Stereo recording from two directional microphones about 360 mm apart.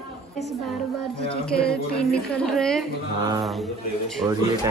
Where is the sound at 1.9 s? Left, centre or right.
Centre.